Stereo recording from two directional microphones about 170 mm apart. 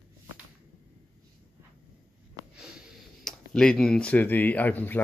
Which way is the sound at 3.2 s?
5° left (ahead or behind).